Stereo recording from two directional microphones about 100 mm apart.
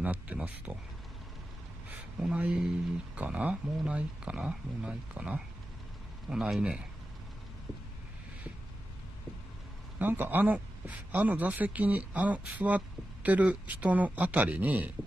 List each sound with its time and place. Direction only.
0.0 s speech: 15° right (ahead or behind)
1.9 s speech: 10° right (ahead or behind)
9.9 s speech: 20° right (ahead or behind)